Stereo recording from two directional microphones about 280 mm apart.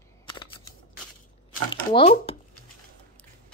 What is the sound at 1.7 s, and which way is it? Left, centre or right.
Speech, left.